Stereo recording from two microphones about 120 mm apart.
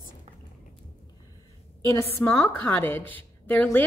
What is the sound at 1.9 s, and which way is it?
Speech, 20° left (ahead or behind).